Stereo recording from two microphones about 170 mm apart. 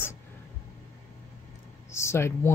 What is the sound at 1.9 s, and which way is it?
Speech, 15° left (ahead or behind).